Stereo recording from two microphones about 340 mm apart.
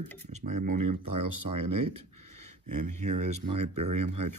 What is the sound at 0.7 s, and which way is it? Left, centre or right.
Speech, right.